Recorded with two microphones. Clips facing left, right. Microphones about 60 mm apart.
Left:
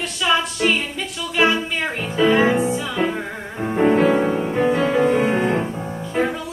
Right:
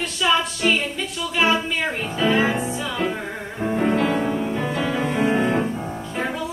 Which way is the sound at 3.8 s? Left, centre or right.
Left.